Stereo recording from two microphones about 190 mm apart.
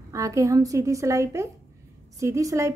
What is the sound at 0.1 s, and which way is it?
A woman's voice, 15° right (ahead or behind).